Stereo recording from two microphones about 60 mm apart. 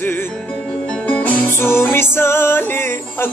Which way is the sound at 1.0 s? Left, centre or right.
Left.